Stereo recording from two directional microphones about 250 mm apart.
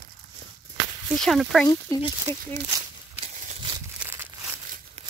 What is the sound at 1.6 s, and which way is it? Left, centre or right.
Speech, centre.